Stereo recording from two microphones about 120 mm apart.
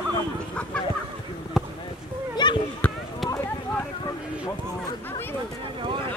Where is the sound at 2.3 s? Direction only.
40° left (ahead or behind).